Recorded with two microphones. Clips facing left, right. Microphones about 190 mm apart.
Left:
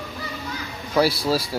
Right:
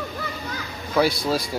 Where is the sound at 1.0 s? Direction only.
5° left (ahead or behind).